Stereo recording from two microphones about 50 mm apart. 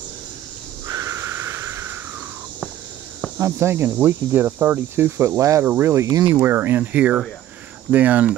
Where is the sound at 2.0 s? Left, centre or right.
Right.